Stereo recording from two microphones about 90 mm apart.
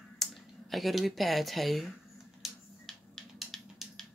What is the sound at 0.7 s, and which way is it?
Speech, centre (ahead or behind).